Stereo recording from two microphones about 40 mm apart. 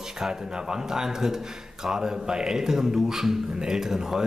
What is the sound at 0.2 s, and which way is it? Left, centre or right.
Speech, centre.